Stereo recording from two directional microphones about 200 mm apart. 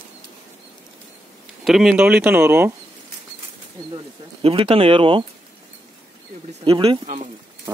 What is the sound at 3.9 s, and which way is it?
Speech, 25° right (ahead or behind).